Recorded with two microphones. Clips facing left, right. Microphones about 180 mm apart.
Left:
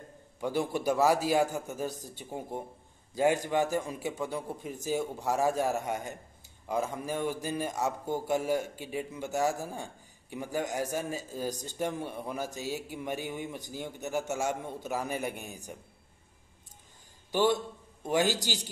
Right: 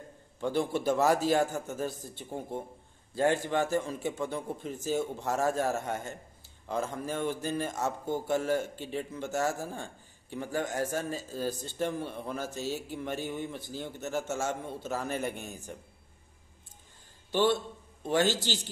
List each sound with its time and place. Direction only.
0.4 s a man's voice: 10° left (ahead or behind)
17.3 s a man's voice: 15° left (ahead or behind)